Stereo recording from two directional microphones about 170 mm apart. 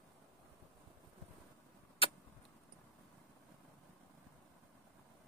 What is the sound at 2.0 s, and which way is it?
Vehicle, 35° left (ahead or behind).